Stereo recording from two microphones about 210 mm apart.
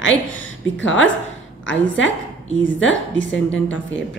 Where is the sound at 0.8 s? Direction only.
65° left (ahead or behind).